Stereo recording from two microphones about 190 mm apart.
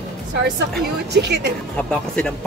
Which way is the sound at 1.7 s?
5° left (ahead or behind).